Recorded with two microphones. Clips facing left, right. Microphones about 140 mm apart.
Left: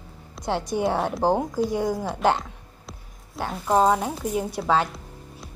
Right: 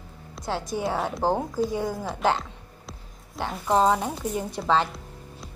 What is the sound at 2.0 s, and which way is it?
A woman's voice, centre (ahead or behind).